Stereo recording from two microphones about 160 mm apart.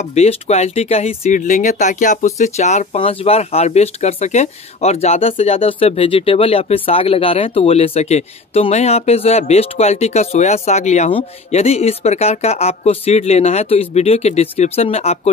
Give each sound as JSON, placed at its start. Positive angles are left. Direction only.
{"t": 0.0, "sound": "speech", "side_deg": 45}